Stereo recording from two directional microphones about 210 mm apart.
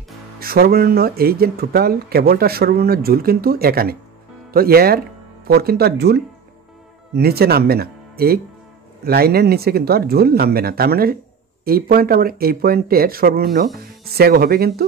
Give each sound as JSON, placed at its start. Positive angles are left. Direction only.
{"t": 0.4, "sound": "speech", "side_deg": -45}